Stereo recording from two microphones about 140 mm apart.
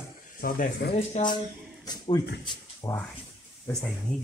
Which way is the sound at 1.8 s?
30° left (ahead or behind).